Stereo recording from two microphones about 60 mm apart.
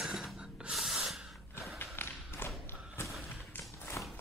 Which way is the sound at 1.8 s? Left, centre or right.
Left.